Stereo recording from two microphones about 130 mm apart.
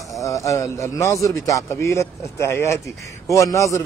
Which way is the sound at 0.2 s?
25° left (ahead or behind).